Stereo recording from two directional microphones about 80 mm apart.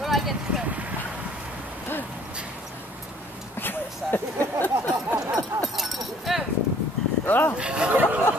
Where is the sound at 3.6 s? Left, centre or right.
Left.